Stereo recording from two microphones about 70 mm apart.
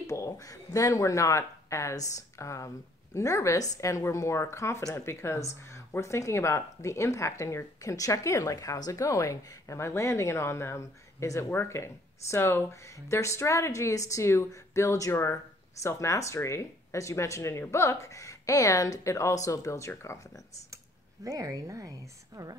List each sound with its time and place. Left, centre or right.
0.0 s speech: left
9.0 s speech: left
20.7 s speech: right